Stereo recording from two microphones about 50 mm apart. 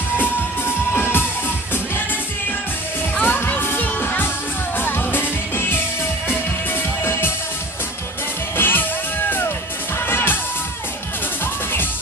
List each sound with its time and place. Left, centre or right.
0.2 s music: left
3.2 s music: left
8.5 s music: left
9.9 s music: left